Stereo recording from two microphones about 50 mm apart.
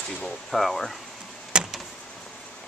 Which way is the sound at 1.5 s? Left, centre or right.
Centre.